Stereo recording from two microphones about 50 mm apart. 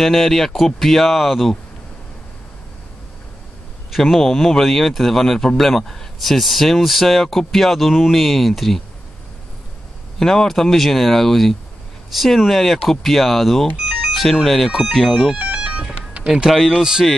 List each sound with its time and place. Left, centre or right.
0.0 s a man's voice: centre
3.9 s a man's voice: centre
10.1 s a man's voice: centre
15.3 s music: right
16.4 s a man's voice: centre
16.7 s speech: centre